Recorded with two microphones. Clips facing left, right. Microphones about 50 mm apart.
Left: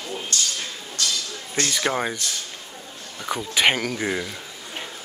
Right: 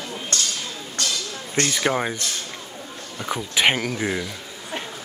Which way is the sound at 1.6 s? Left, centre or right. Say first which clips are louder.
Right 2 dB; centre.